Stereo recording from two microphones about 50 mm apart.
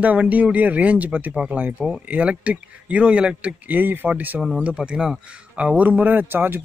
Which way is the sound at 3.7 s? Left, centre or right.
Right.